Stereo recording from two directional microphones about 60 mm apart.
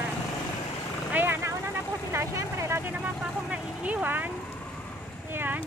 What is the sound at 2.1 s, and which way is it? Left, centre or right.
Vehicle, right.